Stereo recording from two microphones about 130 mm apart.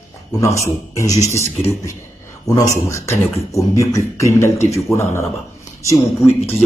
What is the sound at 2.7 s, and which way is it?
Speech, 20° left (ahead or behind).